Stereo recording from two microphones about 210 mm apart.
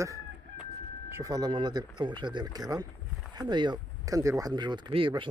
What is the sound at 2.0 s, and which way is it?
Speech, 20° right (ahead or behind).